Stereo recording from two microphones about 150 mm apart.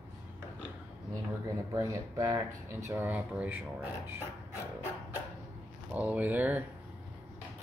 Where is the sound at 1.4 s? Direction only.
20° right (ahead or behind).